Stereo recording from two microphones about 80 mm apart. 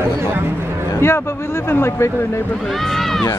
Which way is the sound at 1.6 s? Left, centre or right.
Left.